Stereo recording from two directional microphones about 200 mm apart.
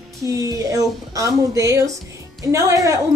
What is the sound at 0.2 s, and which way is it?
Speech, 15° right (ahead or behind).